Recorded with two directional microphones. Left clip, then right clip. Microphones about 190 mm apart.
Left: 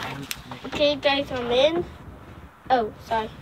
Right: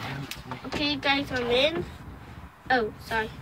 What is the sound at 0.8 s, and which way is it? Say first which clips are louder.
A woman's voice: left 5 dB; centre (ahead or behind).